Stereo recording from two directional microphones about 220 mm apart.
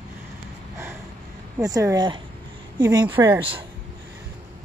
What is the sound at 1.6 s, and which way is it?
Speech, 15° right (ahead or behind).